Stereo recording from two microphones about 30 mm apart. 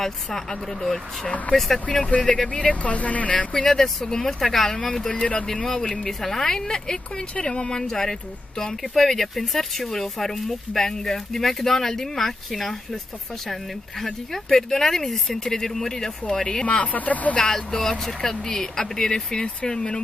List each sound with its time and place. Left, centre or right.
0.0 s speech: centre
2.2 s speech: left
2.7 s speech: left
3.3 s speech: left
3.6 s speech: centre
4.4 s speech: centre
5.1 s speech: left
5.7 s speech: centre
7.9 s speech: centre
14.0 s speech: centre
16.9 s speech: left
17.4 s speech: left